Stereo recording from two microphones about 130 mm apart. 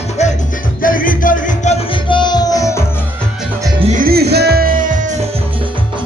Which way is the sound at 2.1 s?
35° left (ahead or behind).